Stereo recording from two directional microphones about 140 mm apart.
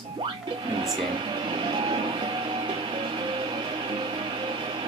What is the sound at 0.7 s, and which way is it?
Music, 35° right (ahead or behind).